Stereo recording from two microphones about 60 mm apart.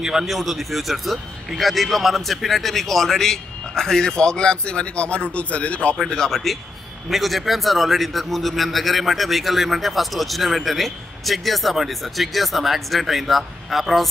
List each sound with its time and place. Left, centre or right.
0.0 s a man's voice: centre; by 5.9 s left
5.9 s a man's voice: centre